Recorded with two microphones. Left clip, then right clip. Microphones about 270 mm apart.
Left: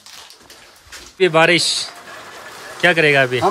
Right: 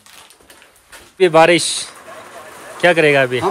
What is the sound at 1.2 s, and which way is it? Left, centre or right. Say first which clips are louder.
Speech: right 3 dB; centre.